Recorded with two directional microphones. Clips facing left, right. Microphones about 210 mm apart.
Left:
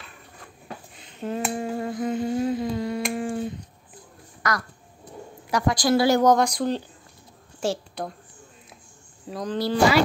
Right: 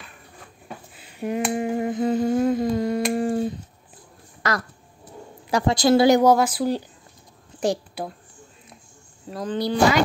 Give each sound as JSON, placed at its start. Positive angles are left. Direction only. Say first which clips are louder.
{"t": 0.9, "sound": "a sound", "louder": "right 3 dB", "side_deg": -10}
{"t": 1.5, "sound": "humming", "louder": "right 4 dB", "side_deg": -15}
{"t": 2.0, "sound": "humming", "louder": "right 4 dB", "side_deg": -45}
{"t": 4.4, "sound": "a sound", "louder": "right 2 dB", "side_deg": -25}
{"t": 5.5, "sound": "a woman's voice", "louder": "right 3 dB", "side_deg": -25}
{"t": 6.3, "sound": "a woman's voice", "louder": "right 1 dB", "side_deg": -5}
{"t": 9.3, "sound": "speech", "louder": "right 1 dB", "side_deg": 0}